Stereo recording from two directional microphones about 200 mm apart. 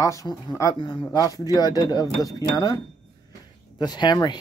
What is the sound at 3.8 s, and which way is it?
Speech, 20° left (ahead or behind).